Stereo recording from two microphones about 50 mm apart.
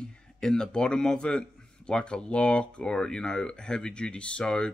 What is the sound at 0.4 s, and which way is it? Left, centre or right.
Speech, centre.